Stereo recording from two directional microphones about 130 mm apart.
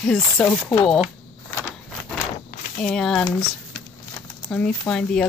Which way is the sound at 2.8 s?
5° left (ahead or behind).